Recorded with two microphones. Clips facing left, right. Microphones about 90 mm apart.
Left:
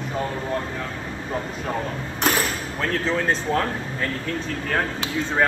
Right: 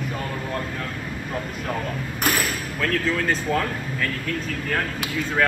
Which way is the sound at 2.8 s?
30° left (ahead or behind).